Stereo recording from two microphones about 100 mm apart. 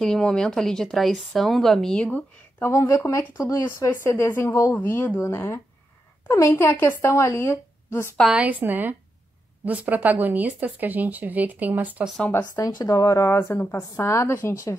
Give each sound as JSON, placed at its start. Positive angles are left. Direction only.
{"t": 0.0, "sound": "a woman's voice", "side_deg": 5}
{"t": 2.6, "sound": "a woman's voice", "side_deg": 25}
{"t": 8.4, "sound": "speech", "side_deg": -15}
{"t": 12.5, "sound": "speech", "side_deg": 35}